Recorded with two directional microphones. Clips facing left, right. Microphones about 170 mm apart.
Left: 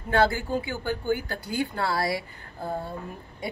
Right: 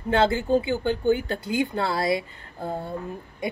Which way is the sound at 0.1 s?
25° right (ahead or behind).